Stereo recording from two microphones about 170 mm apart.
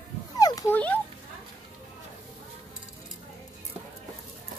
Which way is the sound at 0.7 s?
10° left (ahead or behind).